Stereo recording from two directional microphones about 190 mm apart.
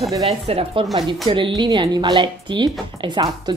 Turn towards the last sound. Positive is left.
turn(degrees=-25)  # may be behind; listen again after turning